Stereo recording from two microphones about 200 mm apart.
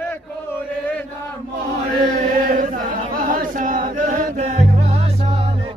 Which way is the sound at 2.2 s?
40° right (ahead or behind).